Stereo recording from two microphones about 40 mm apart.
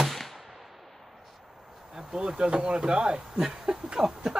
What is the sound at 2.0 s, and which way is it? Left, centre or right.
Speech, right.